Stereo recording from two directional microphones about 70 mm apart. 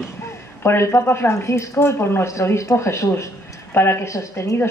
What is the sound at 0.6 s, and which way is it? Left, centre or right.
A woman's voice, left.